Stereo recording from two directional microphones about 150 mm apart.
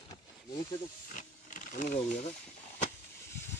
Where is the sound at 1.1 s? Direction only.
60° left (ahead or behind).